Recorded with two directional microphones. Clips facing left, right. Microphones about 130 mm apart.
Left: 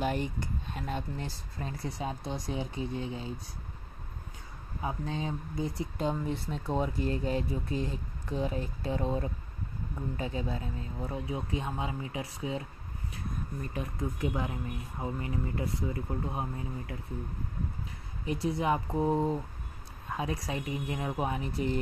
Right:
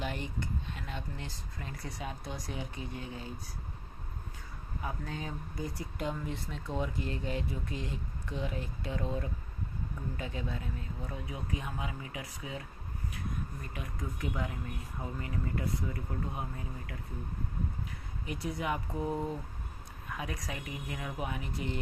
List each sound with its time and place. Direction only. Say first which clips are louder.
0.0 s speech: left 6 dB; 40° left (ahead or behind); by 3.3 s 25° left (ahead or behind)
4.8 s speech: left 5 dB; 25° left (ahead or behind)
13.7 s speech: left 6 dB; 25° left (ahead or behind)
18.2 s speech: left 6 dB; 30° left (ahead or behind)